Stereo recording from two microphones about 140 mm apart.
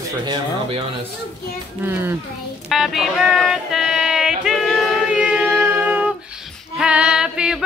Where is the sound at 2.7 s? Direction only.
Centre (ahead or behind).